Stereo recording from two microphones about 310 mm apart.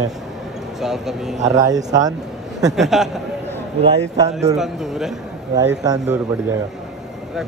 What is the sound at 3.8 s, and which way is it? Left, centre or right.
Speech, centre.